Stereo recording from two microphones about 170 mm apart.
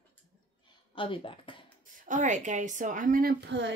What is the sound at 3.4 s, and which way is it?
Speech, 90° right.